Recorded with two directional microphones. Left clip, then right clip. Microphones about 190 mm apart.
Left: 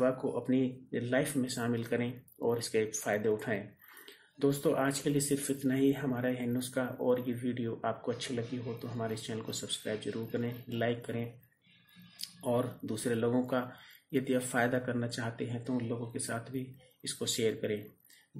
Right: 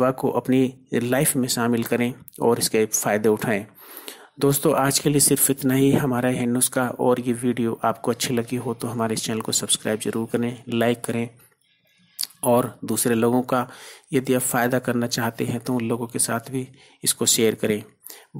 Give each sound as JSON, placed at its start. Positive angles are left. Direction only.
{"t": 0.0, "sound": "speech", "side_deg": -35}
{"t": 12.4, "sound": "speech", "side_deg": -40}